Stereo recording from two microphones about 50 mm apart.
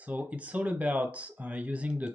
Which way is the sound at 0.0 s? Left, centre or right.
Right.